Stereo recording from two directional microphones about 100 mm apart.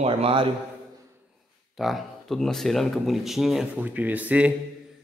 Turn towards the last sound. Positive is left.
turn(degrees=-15)  # may be behind; listen again after turning